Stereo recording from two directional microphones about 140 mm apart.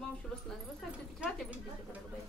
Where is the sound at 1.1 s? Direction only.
Centre (ahead or behind).